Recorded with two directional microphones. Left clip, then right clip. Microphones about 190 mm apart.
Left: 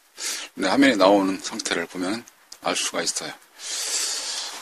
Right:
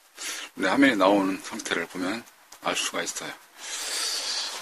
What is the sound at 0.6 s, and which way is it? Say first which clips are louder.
Speech: left 3 dB; 25° left (ahead or behind).